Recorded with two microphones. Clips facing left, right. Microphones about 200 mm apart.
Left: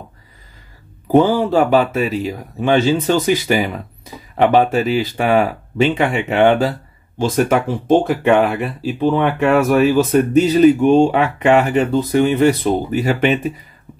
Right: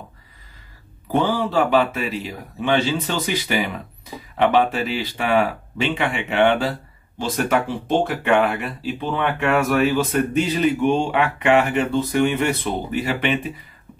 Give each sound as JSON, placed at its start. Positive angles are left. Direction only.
{"t": 1.1, "sound": "speech", "side_deg": 40}